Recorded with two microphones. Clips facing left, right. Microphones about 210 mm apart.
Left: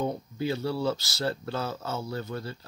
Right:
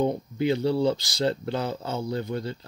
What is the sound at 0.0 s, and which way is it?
Speech, 20° right (ahead or behind).